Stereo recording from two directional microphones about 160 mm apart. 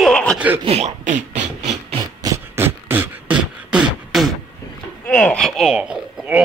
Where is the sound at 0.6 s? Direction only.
45° right (ahead or behind).